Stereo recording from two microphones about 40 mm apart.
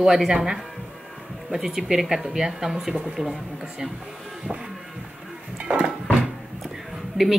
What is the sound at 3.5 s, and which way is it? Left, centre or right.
Speech, right.